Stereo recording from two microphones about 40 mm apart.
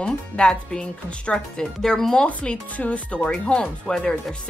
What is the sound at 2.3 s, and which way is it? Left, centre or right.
Speech, left.